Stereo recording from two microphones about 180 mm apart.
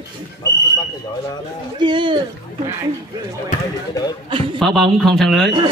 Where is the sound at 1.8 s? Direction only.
25° right (ahead or behind).